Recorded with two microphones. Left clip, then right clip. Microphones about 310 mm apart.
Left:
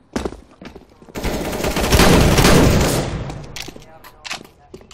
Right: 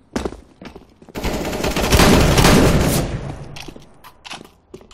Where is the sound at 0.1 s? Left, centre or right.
Centre.